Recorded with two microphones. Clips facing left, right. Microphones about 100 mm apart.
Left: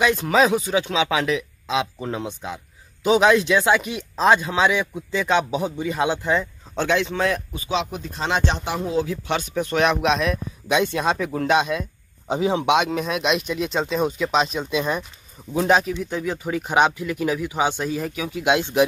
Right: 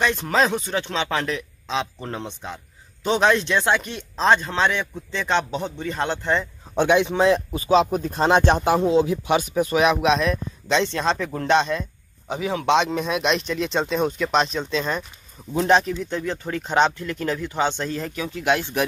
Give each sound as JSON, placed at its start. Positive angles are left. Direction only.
{"t": 0.0, "sound": "a man's voice", "side_deg": 5}
{"t": 6.7, "sound": "a man's voice", "side_deg": -20}
{"t": 7.5, "sound": "speech", "side_deg": -40}
{"t": 8.8, "sound": "a man's voice", "side_deg": -20}
{"t": 12.3, "sound": "a man's voice", "side_deg": 25}
{"t": 12.6, "sound": "a man's voice", "side_deg": 5}